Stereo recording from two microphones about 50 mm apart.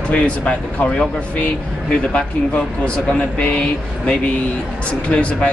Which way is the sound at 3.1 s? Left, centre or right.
Left.